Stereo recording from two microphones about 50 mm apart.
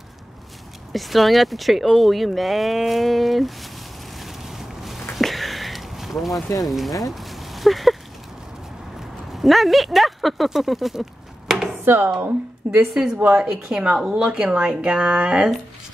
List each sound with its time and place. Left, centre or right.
0.9 s speech: centre
4.2 s a sound: centre
9.3 s speech: centre
11.8 s speech: right
12.6 s speech: right
13.3 s speech: centre
13.7 s speech: right